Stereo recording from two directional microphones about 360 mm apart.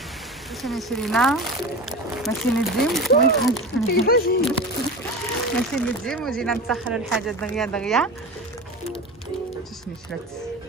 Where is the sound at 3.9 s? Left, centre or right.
Left.